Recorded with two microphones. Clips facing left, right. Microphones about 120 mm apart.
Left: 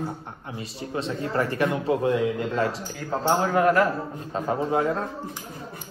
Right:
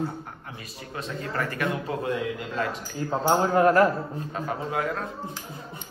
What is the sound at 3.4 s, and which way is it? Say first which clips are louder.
Speech: right 2 dB; 35° right (ahead or behind).